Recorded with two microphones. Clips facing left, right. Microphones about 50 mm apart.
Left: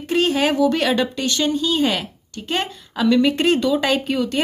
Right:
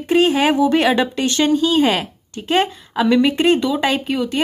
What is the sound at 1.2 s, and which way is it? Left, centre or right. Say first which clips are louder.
A woman's voice: right 4 dB; right.